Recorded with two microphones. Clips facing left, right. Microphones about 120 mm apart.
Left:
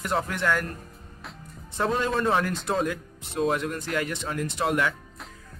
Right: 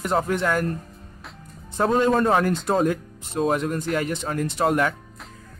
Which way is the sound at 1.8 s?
40° right (ahead or behind).